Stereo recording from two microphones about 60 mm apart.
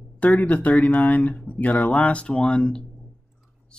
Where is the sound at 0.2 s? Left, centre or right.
Left.